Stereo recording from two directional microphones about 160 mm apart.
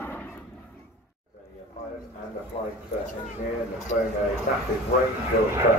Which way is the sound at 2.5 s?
35° left (ahead or behind).